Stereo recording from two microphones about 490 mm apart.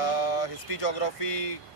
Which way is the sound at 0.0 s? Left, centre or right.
Left.